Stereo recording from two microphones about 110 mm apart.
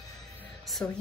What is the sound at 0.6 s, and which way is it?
Speech, 5° left (ahead or behind).